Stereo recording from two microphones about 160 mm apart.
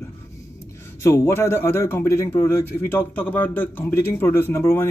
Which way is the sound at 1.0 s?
15° left (ahead or behind).